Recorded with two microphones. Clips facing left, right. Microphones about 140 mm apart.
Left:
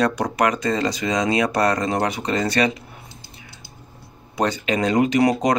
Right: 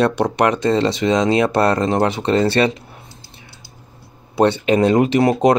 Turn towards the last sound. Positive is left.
turn(degrees=-30)  # may be behind; listen again after turning